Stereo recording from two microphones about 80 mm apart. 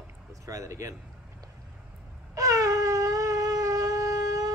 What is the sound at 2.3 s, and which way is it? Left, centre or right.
Wind instrument, right.